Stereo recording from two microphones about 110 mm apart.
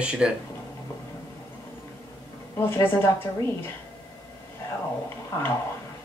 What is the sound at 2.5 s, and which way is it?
A woman's voice, 20° left (ahead or behind).